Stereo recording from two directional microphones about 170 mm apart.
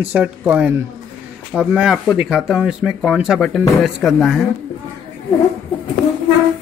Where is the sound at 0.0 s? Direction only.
10° right (ahead or behind).